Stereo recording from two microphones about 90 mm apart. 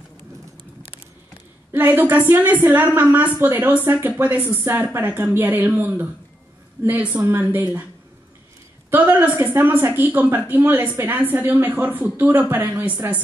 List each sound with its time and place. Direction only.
1.7 s speech: 20° right (ahead or behind)
8.9 s speech: 20° right (ahead or behind)